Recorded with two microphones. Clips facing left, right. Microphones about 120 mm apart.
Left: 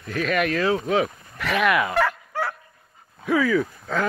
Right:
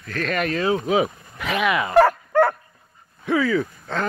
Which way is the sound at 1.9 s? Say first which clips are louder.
Right 8 dB; 50° right (ahead or behind).